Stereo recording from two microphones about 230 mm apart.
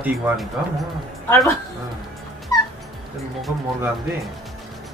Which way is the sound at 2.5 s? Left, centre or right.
Centre.